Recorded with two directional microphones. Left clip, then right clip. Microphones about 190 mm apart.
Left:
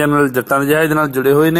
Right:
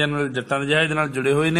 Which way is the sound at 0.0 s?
30° left (ahead or behind).